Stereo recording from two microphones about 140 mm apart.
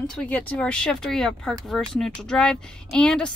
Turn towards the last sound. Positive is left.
turn(degrees=5)  # may be behind; listen again after turning